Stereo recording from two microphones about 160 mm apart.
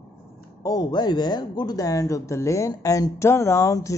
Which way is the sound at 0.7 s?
25° left (ahead or behind).